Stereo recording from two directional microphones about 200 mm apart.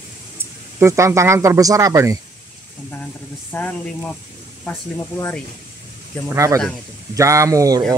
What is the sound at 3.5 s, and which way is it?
Speech, 10° left (ahead or behind).